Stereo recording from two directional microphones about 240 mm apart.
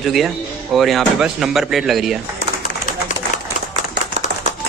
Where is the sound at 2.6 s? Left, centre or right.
Left.